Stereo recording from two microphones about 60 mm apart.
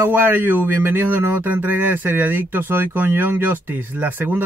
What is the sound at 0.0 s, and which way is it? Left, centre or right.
Speech, right.